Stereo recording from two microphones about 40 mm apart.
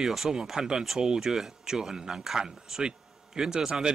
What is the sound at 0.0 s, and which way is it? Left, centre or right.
Speech, centre.